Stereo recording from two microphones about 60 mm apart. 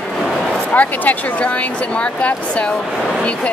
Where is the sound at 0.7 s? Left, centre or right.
Left.